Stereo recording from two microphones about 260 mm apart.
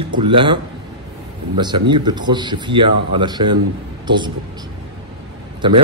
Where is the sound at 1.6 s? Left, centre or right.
Centre.